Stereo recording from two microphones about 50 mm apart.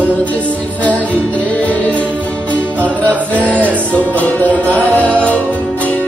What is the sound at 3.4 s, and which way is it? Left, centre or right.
Music, left.